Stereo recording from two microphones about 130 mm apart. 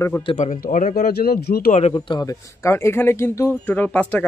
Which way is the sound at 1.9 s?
35° left (ahead or behind).